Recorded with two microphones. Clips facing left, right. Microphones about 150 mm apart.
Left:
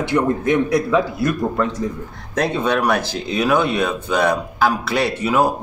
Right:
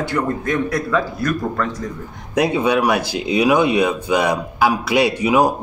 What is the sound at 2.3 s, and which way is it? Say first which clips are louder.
Speech: right 2 dB; 10° right (ahead or behind).